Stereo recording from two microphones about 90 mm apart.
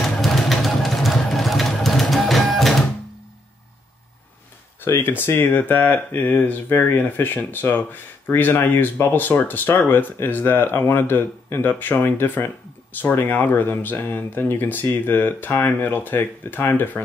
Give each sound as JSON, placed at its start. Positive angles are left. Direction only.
{"t": 0.0, "sound": "vehicle", "side_deg": 0}
{"t": 4.8, "sound": "speech", "side_deg": 25}